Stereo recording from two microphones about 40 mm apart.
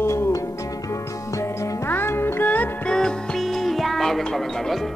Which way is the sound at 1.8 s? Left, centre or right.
Left.